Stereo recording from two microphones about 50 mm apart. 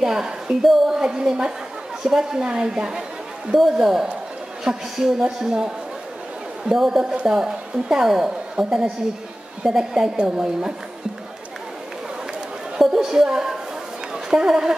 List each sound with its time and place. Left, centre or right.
0.0 s a woman's voice: centre
12.7 s a woman's voice: centre